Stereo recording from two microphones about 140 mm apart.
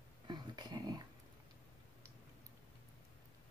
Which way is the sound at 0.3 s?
30° right (ahead or behind).